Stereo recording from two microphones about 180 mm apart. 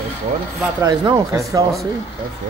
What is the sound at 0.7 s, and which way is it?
Speech, 20° right (ahead or behind).